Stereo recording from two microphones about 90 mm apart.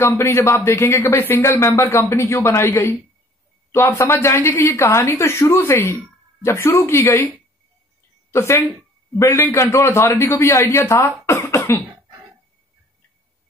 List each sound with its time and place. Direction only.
0.0 s a woman's voice: 30° left (ahead or behind)
8.3 s a woman's voice: 30° left (ahead or behind)